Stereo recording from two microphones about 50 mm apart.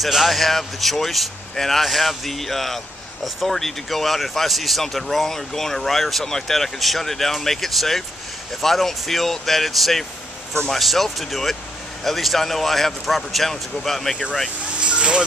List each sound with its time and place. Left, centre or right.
0.0 s speech: centre
14.8 s speech: right